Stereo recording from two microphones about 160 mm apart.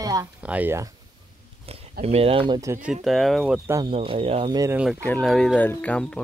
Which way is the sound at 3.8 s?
35° right (ahead or behind).